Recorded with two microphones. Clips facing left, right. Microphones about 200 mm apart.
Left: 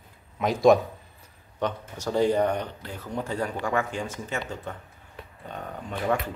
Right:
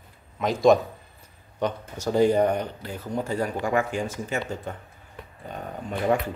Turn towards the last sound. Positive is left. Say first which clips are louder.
# right 3 dB
turn(degrees=-20)  # may be behind; listen again after turning